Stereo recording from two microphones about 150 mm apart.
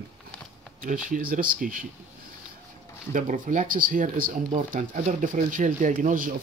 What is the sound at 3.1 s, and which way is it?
Speech, 60° right (ahead or behind).